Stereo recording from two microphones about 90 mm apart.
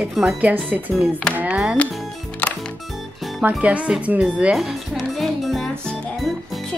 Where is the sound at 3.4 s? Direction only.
15° right (ahead or behind).